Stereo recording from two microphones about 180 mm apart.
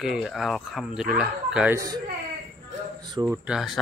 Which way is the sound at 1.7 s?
20° right (ahead or behind).